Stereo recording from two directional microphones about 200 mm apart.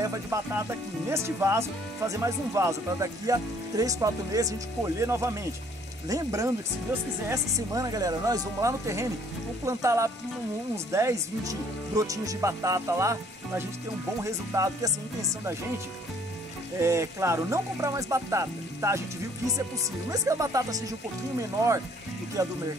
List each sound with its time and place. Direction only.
0.0 s speech: 15° right (ahead or behind)
16.8 s speech: 15° right (ahead or behind)